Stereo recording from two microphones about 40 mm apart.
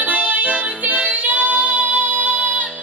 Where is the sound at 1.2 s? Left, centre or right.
Right.